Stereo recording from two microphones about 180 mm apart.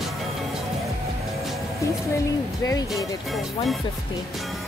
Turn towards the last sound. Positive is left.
turn(degrees=20)  # may be behind; listen again after turning